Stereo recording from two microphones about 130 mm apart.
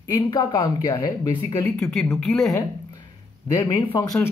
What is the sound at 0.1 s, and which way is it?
A woman's voice, 35° left (ahead or behind).